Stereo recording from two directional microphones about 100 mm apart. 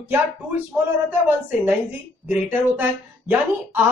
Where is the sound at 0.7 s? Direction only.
10° right (ahead or behind).